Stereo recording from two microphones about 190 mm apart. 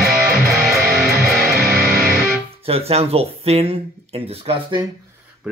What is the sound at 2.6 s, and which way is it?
Speech, 30° right (ahead or behind).